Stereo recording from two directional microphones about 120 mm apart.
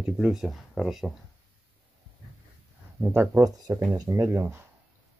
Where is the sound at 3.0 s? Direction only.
20° right (ahead or behind).